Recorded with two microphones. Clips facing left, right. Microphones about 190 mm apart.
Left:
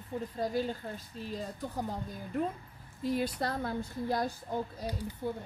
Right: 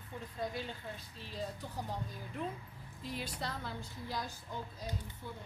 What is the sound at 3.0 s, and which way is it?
A woman's voice, 50° left (ahead or behind).